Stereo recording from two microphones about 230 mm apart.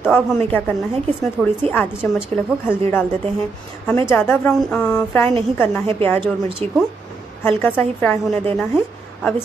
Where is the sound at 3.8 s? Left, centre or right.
Centre.